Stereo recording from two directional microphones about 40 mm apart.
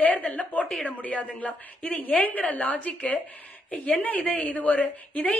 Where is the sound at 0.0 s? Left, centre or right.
Left.